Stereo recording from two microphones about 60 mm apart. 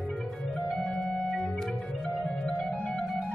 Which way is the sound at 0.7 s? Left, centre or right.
Centre.